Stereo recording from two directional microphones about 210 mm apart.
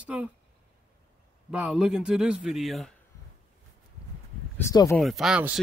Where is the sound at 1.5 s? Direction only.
5° right (ahead or behind).